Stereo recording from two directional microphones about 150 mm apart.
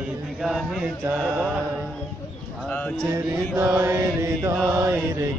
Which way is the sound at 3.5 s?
15° right (ahead or behind).